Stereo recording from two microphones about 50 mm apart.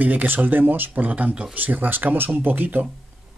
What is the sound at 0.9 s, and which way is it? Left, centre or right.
Speech, right.